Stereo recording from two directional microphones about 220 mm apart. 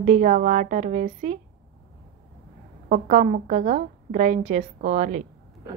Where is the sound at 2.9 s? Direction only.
35° right (ahead or behind).